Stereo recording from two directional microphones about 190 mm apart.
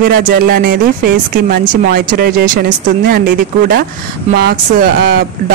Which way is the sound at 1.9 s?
50° right (ahead or behind).